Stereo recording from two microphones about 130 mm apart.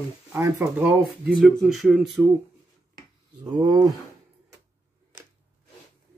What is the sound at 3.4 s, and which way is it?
Speech, 30° right (ahead or behind).